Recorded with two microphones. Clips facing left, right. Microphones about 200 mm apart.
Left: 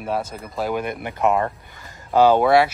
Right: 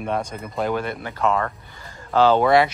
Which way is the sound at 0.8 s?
15° left (ahead or behind).